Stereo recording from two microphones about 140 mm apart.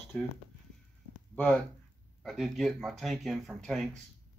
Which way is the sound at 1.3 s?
10° left (ahead or behind).